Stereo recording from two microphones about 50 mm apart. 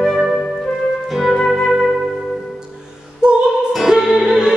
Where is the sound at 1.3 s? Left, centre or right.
Centre.